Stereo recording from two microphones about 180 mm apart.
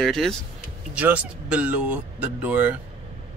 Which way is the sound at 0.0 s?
Centre (ahead or behind).